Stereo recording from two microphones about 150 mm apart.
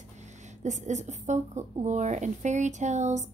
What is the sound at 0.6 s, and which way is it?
Speech, 55° right (ahead or behind).